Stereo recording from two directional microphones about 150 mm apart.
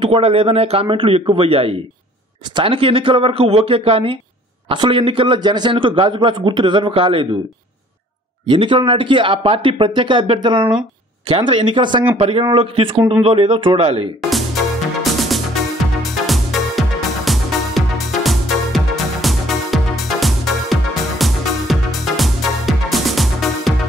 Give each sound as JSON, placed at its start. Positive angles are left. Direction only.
{"t": 0.0, "sound": "a man's voice", "side_deg": -40}
{"t": 8.5, "sound": "a man's voice", "side_deg": -35}
{"t": 15.1, "sound": "music", "side_deg": 0}